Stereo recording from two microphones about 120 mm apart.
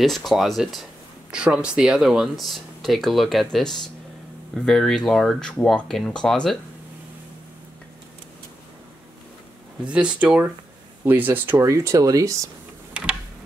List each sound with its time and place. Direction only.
0.0 s speech: centre (ahead or behind)
9.8 s speech: 10° right (ahead or behind); by 12.4 s 25° right (ahead or behind)